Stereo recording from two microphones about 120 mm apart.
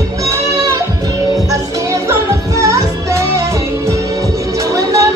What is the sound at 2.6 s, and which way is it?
Music, 25° right (ahead or behind).